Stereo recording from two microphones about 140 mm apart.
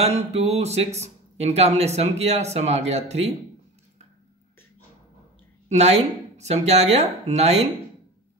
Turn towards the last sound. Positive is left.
turn(degrees=-50)  # may be behind; listen again after turning